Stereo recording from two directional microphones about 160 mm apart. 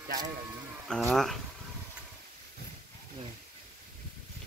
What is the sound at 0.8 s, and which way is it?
Speech, 5° left (ahead or behind).